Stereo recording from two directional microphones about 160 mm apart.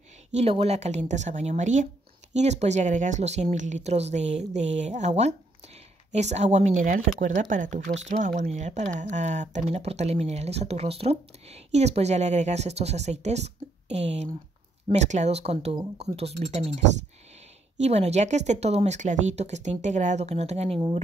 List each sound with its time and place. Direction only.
0.3 s speech: 40° right (ahead or behind)